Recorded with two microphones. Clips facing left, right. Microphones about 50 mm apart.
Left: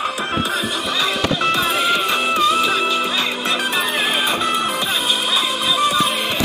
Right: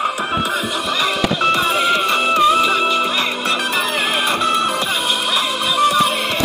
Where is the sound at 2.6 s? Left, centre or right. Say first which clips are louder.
Right 2 dB; centre.